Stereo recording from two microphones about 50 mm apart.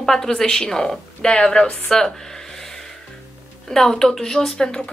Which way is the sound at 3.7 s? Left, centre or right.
Centre.